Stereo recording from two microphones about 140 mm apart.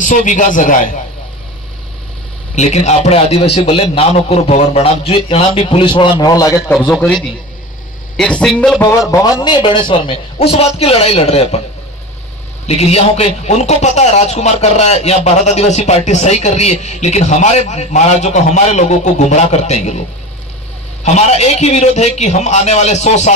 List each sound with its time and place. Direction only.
0.0 s a man's voice: 65° left (ahead or behind)
2.5 s a man's voice: 55° left (ahead or behind); by 6.6 s 25° left (ahead or behind)
6.7 s a man's voice: centre (ahead or behind)
8.2 s speech: 5° left (ahead or behind)
9.4 s a man's voice: 35° left (ahead or behind)
12.6 s a man's voice: 50° left (ahead or behind)
21.0 s a man's voice: 55° left (ahead or behind)